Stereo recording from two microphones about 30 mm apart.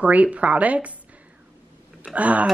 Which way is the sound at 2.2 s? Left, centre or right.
Right.